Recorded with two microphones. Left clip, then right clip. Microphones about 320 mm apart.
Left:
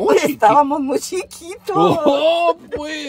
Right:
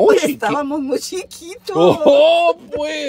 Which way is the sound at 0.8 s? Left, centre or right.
Left.